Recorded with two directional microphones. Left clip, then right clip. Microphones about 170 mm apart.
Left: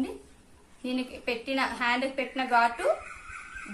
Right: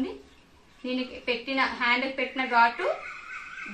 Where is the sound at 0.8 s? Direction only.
30° left (ahead or behind).